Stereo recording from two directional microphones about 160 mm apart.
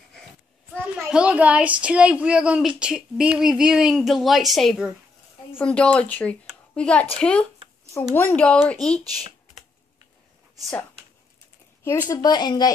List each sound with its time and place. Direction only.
0.7 s a child's voice: 10° right (ahead or behind); by 8.7 s 5° left (ahead or behind)
12.1 s speech: 25° left (ahead or behind)